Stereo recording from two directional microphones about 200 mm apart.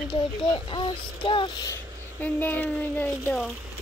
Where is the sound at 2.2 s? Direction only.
10° left (ahead or behind).